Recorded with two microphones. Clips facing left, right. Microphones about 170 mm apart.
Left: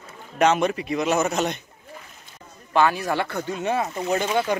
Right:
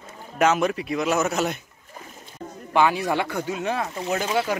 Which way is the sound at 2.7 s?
15° right (ahead or behind).